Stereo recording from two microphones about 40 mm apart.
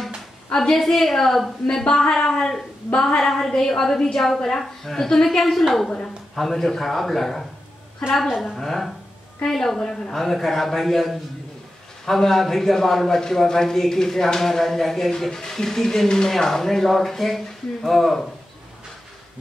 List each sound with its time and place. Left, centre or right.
0.6 s a woman's voice: centre
1.9 s speech: centre
5.8 s a woman's voice: centre